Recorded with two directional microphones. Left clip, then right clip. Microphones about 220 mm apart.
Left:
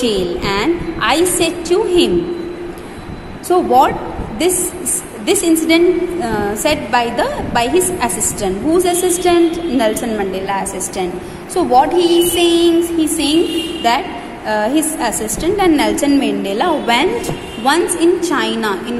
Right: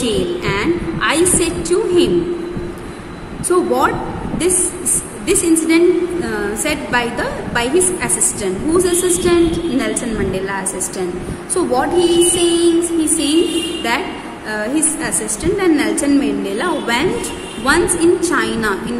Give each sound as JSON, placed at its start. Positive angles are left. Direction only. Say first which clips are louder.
{"t": 0.0, "sound": "a sound", "louder": "left 2 dB", "side_deg": 15}
{"t": 3.4, "sound": "a woman's voice", "louder": "left 4 dB", "side_deg": 5}
{"t": 5.2, "sound": "a woman's voice", "louder": "left 1 dB", "side_deg": 10}
{"t": 14.5, "sound": "a woman's voice", "louder": "left 4 dB", "side_deg": 15}